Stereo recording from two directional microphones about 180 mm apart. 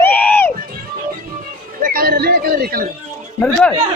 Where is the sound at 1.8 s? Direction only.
55° right (ahead or behind).